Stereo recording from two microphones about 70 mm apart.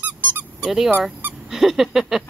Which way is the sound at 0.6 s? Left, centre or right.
Centre.